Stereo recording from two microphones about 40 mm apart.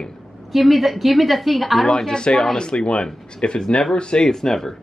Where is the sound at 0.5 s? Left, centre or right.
Centre.